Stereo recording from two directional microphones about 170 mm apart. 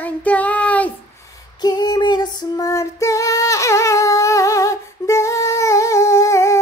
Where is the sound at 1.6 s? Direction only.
25° left (ahead or behind).